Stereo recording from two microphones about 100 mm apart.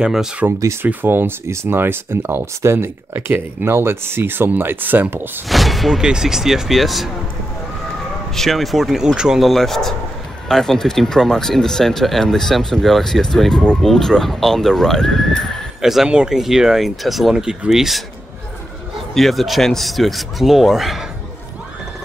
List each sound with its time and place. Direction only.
0.0 s speech: 5° right (ahead or behind)
0.5 s speech: 30° right (ahead or behind)
5.5 s speech: centre (ahead or behind)
8.4 s speech: centre (ahead or behind)
15.8 s speech: 5° right (ahead or behind)
19.1 s speech: centre (ahead or behind)